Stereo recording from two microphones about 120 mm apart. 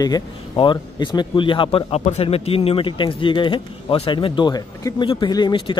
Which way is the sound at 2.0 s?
70° left (ahead or behind).